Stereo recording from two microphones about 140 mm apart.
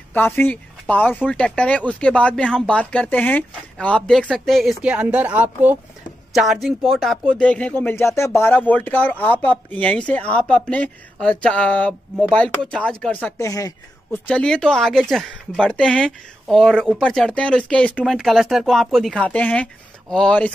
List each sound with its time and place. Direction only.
0.1 s speech: 15° left (ahead or behind); by 5.8 s 10° right (ahead or behind)
6.3 s speech: centre (ahead or behind)
13.4 s speech: 25° left (ahead or behind)
14.1 s speech: 10° left (ahead or behind)